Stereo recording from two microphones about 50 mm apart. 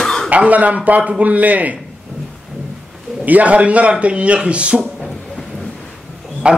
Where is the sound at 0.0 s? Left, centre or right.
Centre.